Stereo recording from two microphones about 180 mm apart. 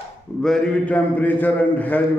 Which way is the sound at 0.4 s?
5° left (ahead or behind).